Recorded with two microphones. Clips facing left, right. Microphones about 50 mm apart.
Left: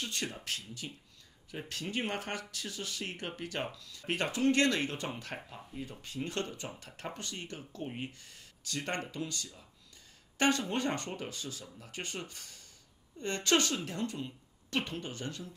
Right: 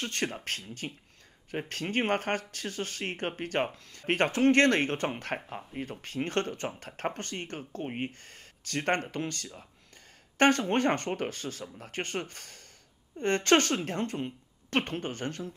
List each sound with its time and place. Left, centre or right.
0.0 s speech: right